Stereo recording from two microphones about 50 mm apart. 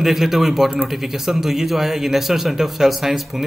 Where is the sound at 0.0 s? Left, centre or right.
Centre.